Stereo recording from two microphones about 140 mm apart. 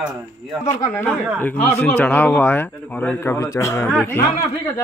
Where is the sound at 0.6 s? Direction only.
20° left (ahead or behind).